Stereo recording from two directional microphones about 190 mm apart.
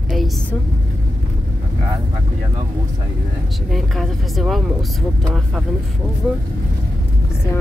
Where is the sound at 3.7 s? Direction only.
Centre (ahead or behind).